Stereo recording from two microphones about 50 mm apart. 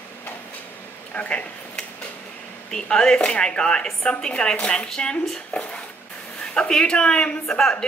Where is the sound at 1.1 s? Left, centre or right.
Left.